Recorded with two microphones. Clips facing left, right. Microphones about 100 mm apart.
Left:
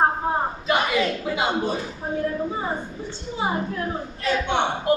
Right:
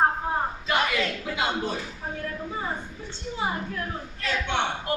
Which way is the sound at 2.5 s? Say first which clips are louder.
Left 4 dB; 25° left (ahead or behind).